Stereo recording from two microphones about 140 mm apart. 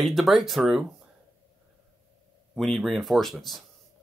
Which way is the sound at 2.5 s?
Centre (ahead or behind).